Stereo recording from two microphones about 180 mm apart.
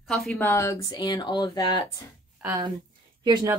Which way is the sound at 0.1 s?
5° left (ahead or behind).